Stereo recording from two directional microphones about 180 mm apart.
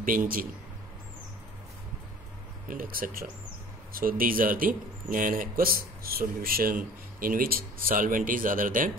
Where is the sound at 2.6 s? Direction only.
50° right (ahead or behind).